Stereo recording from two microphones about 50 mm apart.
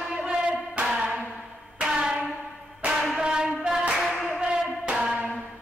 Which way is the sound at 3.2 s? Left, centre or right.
Centre.